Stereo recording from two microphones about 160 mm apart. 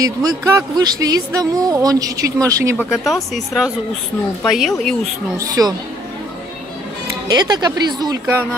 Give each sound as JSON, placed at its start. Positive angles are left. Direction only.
{"t": 0.0, "sound": "speech", "side_deg": -25}
{"t": 5.4, "sound": "speech", "side_deg": -20}
{"t": 7.2, "sound": "speech", "side_deg": -25}